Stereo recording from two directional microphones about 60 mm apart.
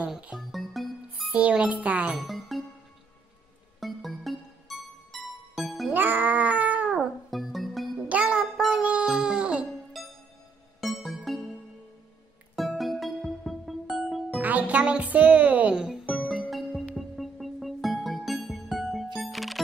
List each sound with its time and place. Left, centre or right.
0.4 s music: centre
1.3 s a child's voice: centre
2.1 s music: centre
3.8 s music: centre
5.9 s cat: right
7.0 s music: centre
8.1 s music: right
8.5 s music: centre
9.9 s music: centre
12.5 s music: centre
14.4 s music: right
15.7 s music: centre
16.4 s music: centre